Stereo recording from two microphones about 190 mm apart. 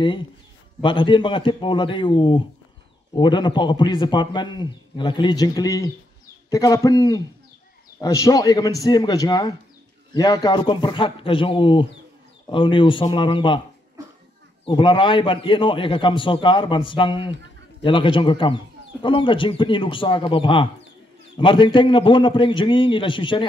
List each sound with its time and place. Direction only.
0.8 s a man's voice: 25° left (ahead or behind)
14.6 s a man's voice: 25° left (ahead or behind)